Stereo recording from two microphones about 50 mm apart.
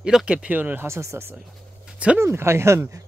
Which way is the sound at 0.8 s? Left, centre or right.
Right.